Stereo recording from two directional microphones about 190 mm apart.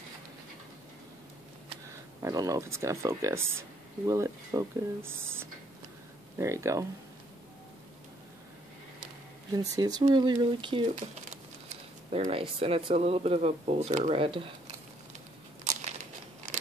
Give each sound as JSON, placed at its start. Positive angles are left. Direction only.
{"t": 2.2, "sound": "speech", "side_deg": -15}
{"t": 9.5, "sound": "speech", "side_deg": -20}
{"t": 12.1, "sound": "speech", "side_deg": -30}
{"t": 15.6, "sound": "crumpling", "side_deg": -35}